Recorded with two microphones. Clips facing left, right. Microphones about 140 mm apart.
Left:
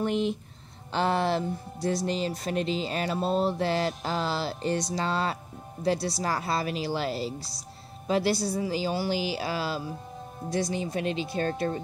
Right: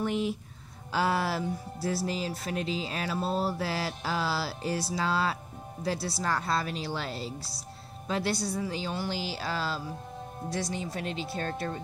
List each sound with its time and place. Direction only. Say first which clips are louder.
0.0 s speech: left 3 dB; 5° right (ahead or behind); by 11.4 s 20° left (ahead or behind)